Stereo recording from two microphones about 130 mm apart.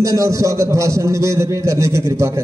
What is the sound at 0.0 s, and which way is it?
A man's voice, 25° right (ahead or behind).